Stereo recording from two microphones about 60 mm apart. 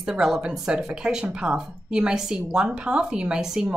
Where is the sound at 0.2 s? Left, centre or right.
Centre.